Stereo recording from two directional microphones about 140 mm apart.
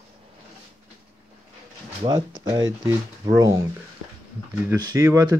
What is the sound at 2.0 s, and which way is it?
Speech, 30° right (ahead or behind).